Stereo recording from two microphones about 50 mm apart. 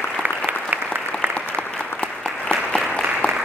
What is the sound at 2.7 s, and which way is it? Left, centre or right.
Applause, centre.